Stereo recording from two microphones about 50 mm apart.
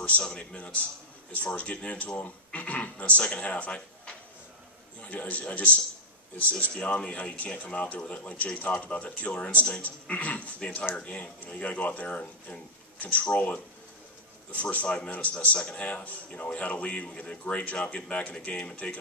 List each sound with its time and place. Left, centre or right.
0.0 s a man's voice: left
7.1 s a man's voice: left